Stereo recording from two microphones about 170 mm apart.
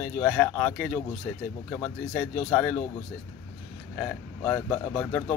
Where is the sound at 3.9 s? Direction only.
Centre (ahead or behind).